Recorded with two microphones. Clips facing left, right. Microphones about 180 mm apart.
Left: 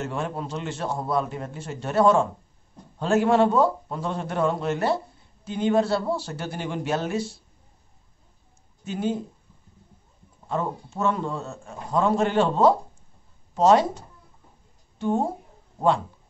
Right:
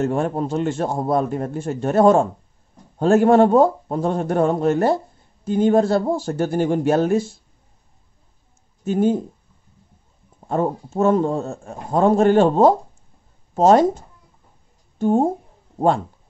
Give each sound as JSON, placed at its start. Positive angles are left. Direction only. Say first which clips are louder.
{"t": 0.0, "sound": "a man's voice", "louder": "right 9 dB", "side_deg": -50}
{"t": 8.8, "sound": "a man's voice", "louder": "right 9 dB", "side_deg": -50}
{"t": 10.4, "sound": "a man's voice", "louder": "right 7 dB", "side_deg": -45}